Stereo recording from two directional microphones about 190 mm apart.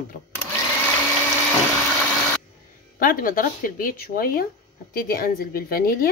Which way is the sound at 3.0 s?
45° left (ahead or behind).